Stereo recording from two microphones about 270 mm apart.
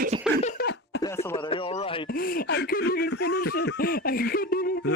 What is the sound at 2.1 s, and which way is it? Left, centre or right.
Snicker, left.